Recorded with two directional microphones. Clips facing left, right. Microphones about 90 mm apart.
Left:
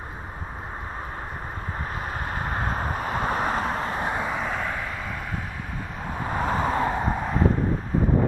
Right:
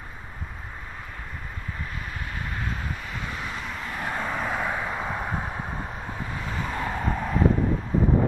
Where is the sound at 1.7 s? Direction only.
40° left (ahead or behind).